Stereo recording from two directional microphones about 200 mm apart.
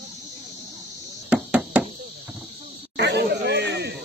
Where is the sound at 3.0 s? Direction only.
55° right (ahead or behind).